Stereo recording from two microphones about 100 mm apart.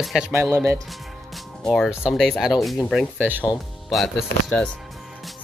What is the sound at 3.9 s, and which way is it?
Speech, centre (ahead or behind).